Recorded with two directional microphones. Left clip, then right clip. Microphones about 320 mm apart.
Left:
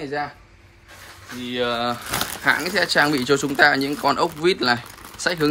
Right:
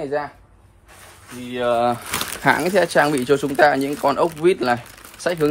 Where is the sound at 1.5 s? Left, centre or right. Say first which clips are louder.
Right 4 dB; centre.